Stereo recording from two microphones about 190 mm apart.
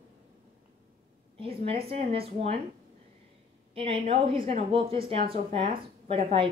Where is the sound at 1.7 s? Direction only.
30° right (ahead or behind).